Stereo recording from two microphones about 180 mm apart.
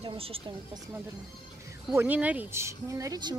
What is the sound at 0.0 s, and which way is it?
Speech, 30° right (ahead or behind).